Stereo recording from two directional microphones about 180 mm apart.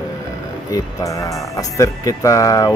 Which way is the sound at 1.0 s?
15° left (ahead or behind).